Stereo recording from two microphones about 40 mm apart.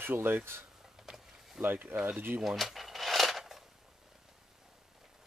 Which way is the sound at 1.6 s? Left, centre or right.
Right.